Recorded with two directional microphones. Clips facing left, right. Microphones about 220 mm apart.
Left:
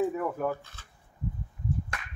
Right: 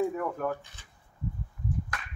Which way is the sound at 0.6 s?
15° right (ahead or behind).